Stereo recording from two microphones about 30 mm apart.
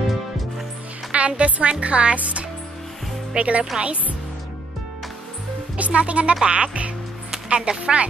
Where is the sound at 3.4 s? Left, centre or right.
Right.